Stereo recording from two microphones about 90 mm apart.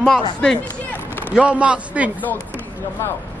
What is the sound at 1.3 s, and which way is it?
Speech, 15° right (ahead or behind).